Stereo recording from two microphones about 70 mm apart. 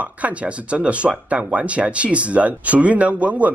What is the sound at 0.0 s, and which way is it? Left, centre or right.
Speech, centre.